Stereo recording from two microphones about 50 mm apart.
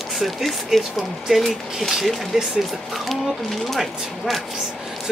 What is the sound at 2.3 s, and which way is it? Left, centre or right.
Speech, centre.